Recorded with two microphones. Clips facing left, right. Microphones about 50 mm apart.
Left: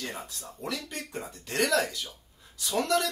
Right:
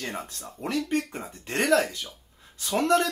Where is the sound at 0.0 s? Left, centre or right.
Right.